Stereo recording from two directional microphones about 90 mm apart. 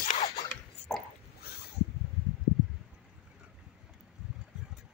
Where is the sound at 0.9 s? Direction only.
10° left (ahead or behind).